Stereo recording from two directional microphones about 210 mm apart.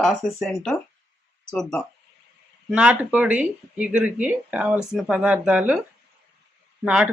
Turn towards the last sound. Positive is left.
turn(degrees=-5)  # may be behind; listen again after turning